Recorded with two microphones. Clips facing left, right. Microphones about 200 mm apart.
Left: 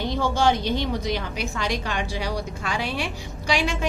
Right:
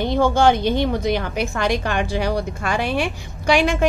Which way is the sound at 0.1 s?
55° right (ahead or behind).